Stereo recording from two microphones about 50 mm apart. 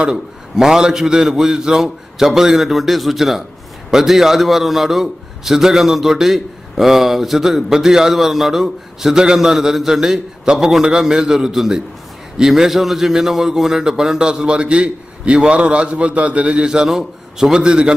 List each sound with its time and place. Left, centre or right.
0.0 s a man's voice: centre